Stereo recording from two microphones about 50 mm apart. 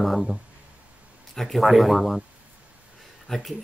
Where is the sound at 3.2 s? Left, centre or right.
Centre.